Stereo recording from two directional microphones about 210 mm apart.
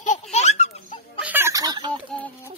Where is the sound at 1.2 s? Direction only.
10° right (ahead or behind).